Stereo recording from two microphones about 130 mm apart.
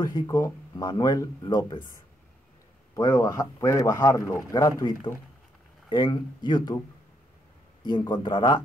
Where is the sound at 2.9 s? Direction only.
30° left (ahead or behind).